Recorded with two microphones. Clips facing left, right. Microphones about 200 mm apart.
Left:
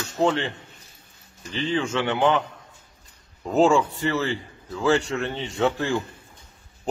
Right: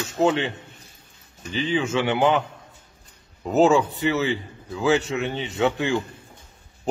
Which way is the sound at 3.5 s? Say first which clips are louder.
Right 1 dB; 5° right (ahead or behind).